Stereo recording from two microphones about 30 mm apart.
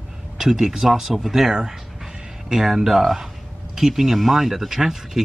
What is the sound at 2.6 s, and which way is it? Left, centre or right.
Speech, centre.